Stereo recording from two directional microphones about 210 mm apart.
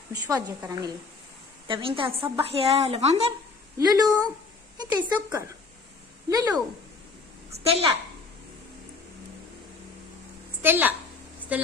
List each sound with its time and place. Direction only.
0.1 s a woman's voice: 15° right (ahead or behind)
3.7 s a woman's voice: 15° right (ahead or behind)
7.5 s a child's voice: 30° right (ahead or behind)
10.6 s a woman's voice: 10° right (ahead or behind)